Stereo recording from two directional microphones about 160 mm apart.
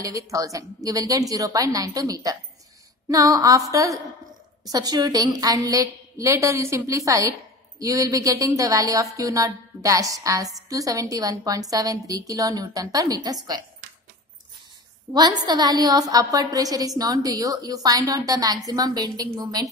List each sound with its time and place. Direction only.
0.0 s speech: 20° right (ahead or behind)
15.1 s speech: 25° right (ahead or behind)